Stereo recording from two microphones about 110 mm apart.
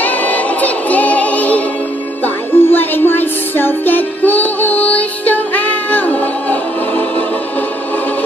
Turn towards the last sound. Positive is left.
turn(degrees=15)  # may be behind; listen again after turning